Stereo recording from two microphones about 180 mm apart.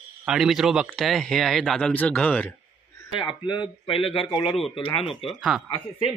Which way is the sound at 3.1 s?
25° left (ahead or behind).